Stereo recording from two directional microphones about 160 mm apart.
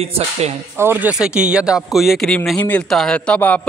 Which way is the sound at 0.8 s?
10° right (ahead or behind).